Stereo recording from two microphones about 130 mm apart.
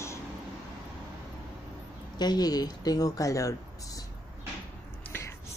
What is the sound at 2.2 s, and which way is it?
A woman's voice, 30° left (ahead or behind).